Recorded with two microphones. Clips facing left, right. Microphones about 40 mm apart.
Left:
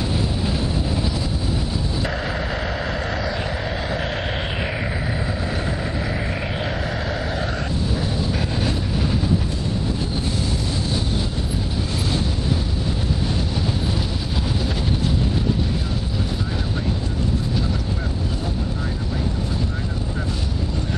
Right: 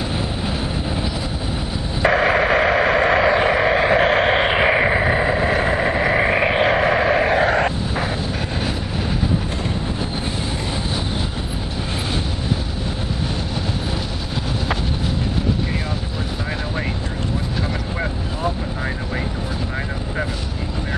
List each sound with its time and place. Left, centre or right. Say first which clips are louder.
2.0 s vehicle: right 10 dB; right